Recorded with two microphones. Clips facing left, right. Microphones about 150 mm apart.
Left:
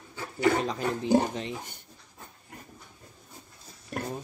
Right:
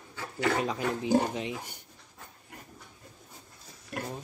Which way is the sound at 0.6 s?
10° right (ahead or behind).